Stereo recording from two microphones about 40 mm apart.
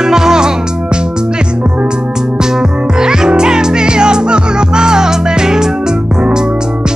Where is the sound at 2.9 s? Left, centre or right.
Centre.